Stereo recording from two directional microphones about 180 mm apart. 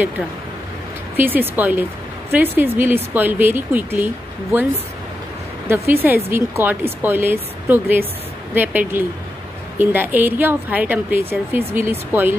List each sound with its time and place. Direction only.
1.1 s a woman's voice: 10° right (ahead or behind)
6.3 s a woman's voice: 10° right (ahead or behind)